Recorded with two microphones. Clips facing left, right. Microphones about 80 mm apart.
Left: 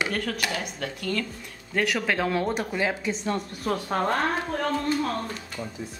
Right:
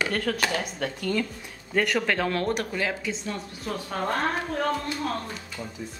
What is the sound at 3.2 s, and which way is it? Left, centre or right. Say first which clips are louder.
Speech: left 5 dB; left.